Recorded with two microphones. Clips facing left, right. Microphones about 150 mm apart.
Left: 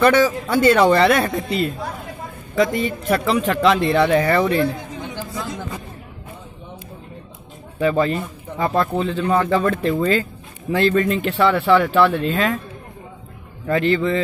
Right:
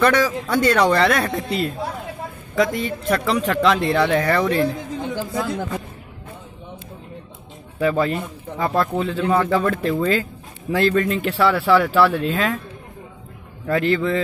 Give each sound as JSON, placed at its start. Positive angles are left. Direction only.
{"t": 0.0, "sound": "speech", "side_deg": 0}
{"t": 5.1, "sound": "speech", "side_deg": -55}
{"t": 7.8, "sound": "speech", "side_deg": 0}
{"t": 13.7, "sound": "speech", "side_deg": 0}